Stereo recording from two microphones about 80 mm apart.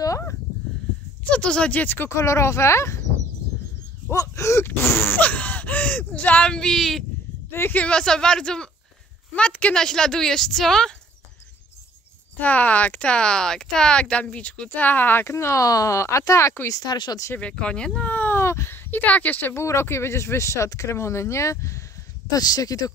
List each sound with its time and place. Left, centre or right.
1.3 s speech: centre
2.0 s speech: left
4.1 s speech: left
4.6 s speech: left; by 7.1 s centre
7.7 s speech: centre
12.4 s speech: centre; by 16.5 s left
16.8 s speech: left
17.4 s speech: centre
18.4 s a sound: left
19.5 s speech: left
22.3 s speech: left